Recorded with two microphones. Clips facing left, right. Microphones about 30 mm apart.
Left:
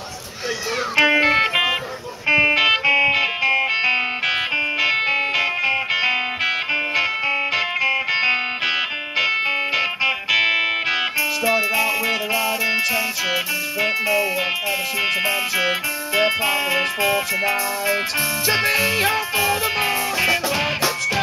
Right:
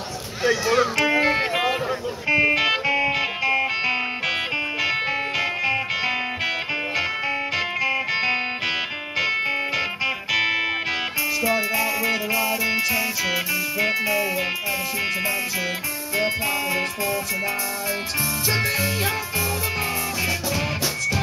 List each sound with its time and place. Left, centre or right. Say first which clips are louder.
0.5 s speech: right 5 dB; right
0.9 s music: left 4 dB; left
15.0 s music: left 6 dB; left